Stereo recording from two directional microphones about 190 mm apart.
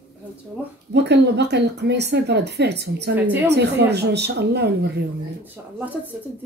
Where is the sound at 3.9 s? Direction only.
60° right (ahead or behind).